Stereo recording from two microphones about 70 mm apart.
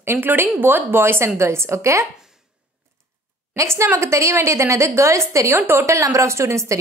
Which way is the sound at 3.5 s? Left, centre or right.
Right.